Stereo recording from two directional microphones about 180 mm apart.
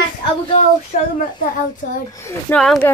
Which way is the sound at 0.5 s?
40° left (ahead or behind).